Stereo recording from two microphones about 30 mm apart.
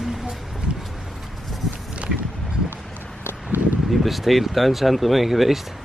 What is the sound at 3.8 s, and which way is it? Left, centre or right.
Speech, centre.